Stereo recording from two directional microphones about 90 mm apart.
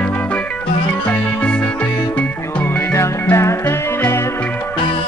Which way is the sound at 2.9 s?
30° left (ahead or behind).